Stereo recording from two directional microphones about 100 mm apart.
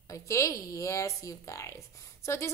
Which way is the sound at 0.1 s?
30° left (ahead or behind).